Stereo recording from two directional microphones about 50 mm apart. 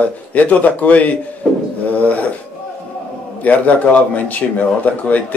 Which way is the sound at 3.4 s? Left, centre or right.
Left.